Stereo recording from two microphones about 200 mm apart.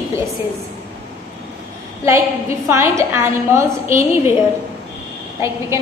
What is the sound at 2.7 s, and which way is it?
A woman's voice, 15° right (ahead or behind).